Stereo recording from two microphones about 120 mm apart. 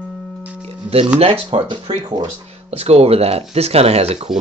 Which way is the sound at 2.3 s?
60° right (ahead or behind).